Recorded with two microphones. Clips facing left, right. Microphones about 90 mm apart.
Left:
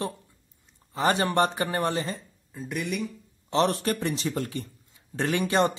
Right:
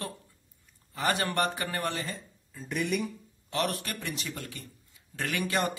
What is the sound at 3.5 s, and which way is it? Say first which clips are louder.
Speech: left 7 dB; 30° left (ahead or behind).